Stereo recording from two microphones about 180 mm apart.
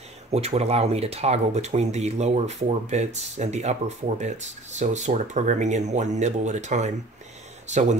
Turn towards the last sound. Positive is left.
turn(degrees=-40)  # may be behind; listen again after turning